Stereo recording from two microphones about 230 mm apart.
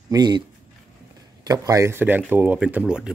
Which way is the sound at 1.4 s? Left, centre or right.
Centre.